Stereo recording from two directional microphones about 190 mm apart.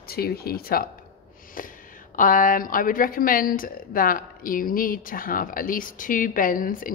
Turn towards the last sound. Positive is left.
turn(degrees=45)  # may be behind; listen again after turning